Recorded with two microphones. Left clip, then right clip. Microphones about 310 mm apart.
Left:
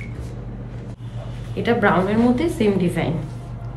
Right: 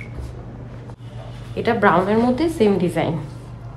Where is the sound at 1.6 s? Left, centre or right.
Right.